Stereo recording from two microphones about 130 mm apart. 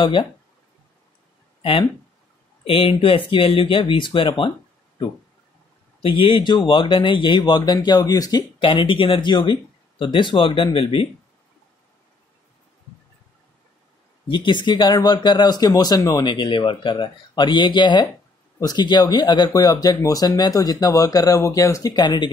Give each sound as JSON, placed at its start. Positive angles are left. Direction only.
{"t": 0.0, "sound": "speech", "side_deg": 40}
{"t": 1.6, "sound": "speech", "side_deg": 45}
{"t": 6.0, "sound": "speech", "side_deg": 45}
{"t": 14.2, "sound": "speech", "side_deg": 40}